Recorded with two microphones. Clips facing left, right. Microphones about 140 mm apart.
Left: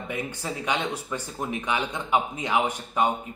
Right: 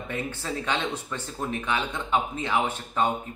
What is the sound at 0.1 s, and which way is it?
Speech, 15° left (ahead or behind).